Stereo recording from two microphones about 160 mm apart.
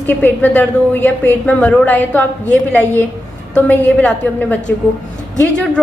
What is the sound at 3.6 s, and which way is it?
Speech, 10° left (ahead or behind).